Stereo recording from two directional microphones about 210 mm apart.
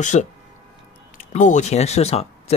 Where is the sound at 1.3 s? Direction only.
35° left (ahead or behind).